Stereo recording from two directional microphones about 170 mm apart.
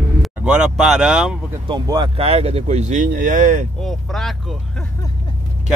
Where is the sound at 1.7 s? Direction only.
25° right (ahead or behind); by 3.6 s 45° right (ahead or behind).